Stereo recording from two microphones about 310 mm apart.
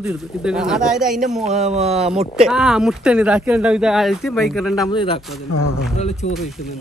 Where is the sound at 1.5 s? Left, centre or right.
Right.